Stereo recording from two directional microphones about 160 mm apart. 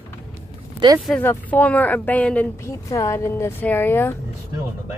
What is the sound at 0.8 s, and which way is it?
Speech, 30° right (ahead or behind).